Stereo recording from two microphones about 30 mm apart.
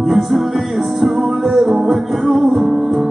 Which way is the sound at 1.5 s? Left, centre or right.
Centre.